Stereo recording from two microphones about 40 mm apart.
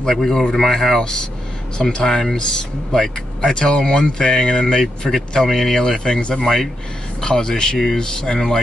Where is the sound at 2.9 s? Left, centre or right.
Centre.